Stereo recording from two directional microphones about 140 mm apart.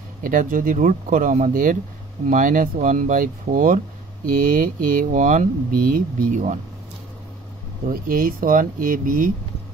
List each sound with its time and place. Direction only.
0.2 s speech: 75° right (ahead or behind)
7.9 s speech: 85° right